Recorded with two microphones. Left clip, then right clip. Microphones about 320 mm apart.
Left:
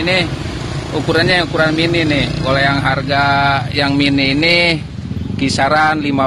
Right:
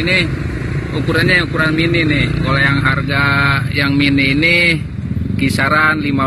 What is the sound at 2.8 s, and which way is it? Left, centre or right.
Speech, left.